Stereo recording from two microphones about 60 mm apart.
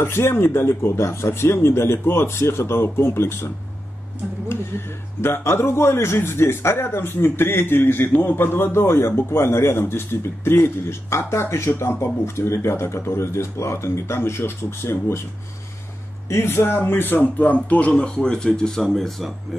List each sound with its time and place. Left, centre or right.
0.0 s a man's voice: left
16.3 s speech: left; by 18.7 s centre
18.8 s speech: centre